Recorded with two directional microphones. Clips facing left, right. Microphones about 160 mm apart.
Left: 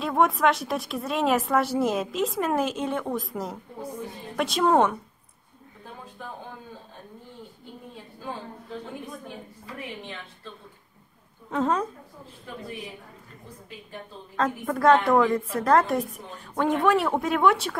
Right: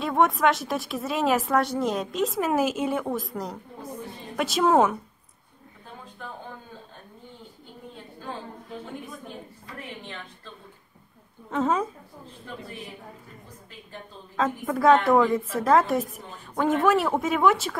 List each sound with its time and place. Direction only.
0.0 s a woman's voice: centre (ahead or behind)
11.5 s a woman's voice: 5° right (ahead or behind)
14.3 s a woman's voice: centre (ahead or behind)